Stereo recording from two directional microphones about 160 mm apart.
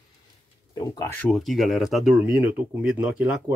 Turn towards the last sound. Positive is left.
turn(degrees=-5)  # may be behind; listen again after turning